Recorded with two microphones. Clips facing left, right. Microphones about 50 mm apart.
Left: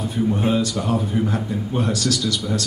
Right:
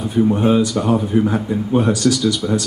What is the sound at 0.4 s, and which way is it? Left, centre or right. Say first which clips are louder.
Speech: right 5 dB; centre.